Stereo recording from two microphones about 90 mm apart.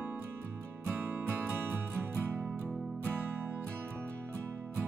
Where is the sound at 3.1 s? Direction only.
25° right (ahead or behind).